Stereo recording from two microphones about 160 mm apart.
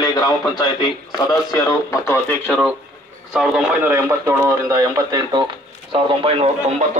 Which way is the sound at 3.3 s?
5° right (ahead or behind).